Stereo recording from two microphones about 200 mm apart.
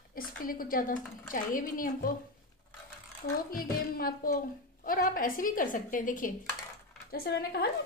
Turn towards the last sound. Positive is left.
turn(degrees=50)  # may be behind; listen again after turning